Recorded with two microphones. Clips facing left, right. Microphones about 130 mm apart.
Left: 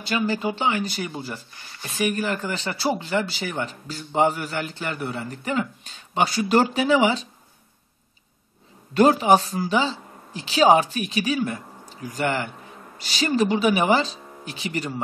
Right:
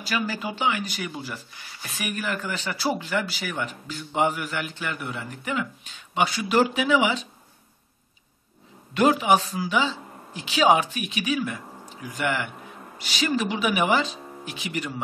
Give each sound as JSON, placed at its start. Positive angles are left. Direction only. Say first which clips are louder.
{"t": 0.0, "sound": "speech", "louder": "left 4 dB", "side_deg": 25}
{"t": 8.9, "sound": "speech", "louder": "left 3 dB", "side_deg": 35}